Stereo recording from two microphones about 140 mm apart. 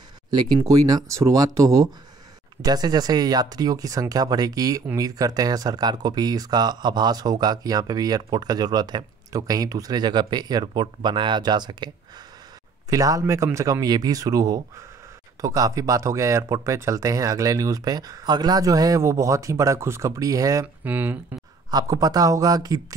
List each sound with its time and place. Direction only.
0.3 s speech: 30° right (ahead or behind)
12.9 s speech: 25° right (ahead or behind)
20.6 s speech: 10° right (ahead or behind)
21.6 s speech: 25° right (ahead or behind)